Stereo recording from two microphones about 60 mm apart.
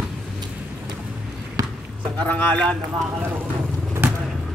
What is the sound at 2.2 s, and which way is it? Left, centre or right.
Speech, left.